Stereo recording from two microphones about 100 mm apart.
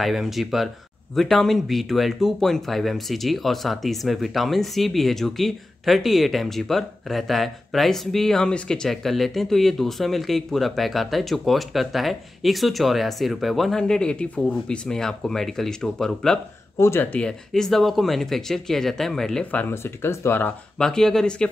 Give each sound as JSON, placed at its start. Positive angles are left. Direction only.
{"t": 0.0, "sound": "speech", "side_deg": 0}
{"t": 16.7, "sound": "speech", "side_deg": 25}
{"t": 19.7, "sound": "speech", "side_deg": 25}
{"t": 20.7, "sound": "speech", "side_deg": 5}